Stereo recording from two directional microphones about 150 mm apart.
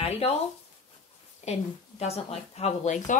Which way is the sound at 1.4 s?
45° left (ahead or behind).